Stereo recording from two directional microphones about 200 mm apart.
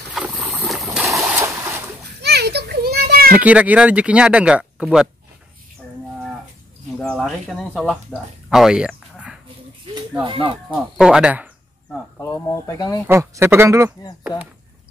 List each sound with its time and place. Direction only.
0.1 s boat: 5° right (ahead or behind)
1.2 s splash: 10° right (ahead or behind)
2.2 s children playing: 55° right (ahead or behind)
3.3 s speech: 5° right (ahead or behind)
7.0 s speech: 5° left (ahead or behind)
10.2 s speech: 25° right (ahead or behind)
10.7 s speech: 5° right (ahead or behind)
12.2 s speech: 15° left (ahead or behind)
13.0 s speech: 15° right (ahead or behind)